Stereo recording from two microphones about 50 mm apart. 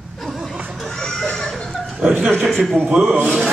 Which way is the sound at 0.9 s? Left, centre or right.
Centre.